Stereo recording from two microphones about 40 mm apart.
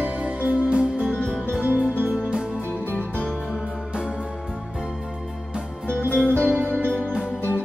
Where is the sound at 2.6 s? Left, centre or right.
Left.